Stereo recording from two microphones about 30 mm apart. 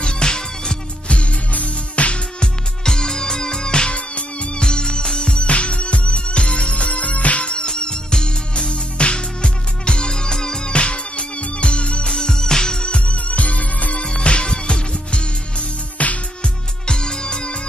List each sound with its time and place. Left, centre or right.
0.0 s music: left
1.0 s music: left
2.4 s music: left
3.9 s music: left
4.6 s music: left
5.5 s music: left
7.4 s music: left
10.7 s music: left
12.1 s music: left
13.1 s music: left
13.9 s music: left
16.0 s music: left
16.8 s music: left